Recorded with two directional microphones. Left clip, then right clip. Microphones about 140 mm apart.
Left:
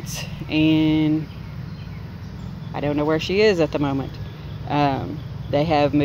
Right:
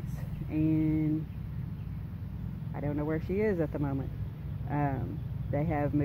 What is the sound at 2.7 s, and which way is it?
Speech, 35° left (ahead or behind).